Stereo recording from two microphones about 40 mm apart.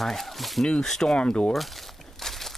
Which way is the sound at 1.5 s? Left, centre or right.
Centre.